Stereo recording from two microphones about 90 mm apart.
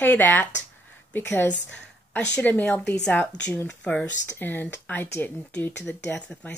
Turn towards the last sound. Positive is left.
turn(degrees=10)  # may be behind; listen again after turning